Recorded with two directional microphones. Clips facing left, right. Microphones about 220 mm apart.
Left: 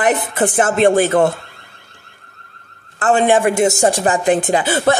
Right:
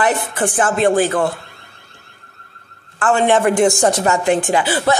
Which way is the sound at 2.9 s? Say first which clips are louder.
Left 1 dB; 20° left (ahead or behind).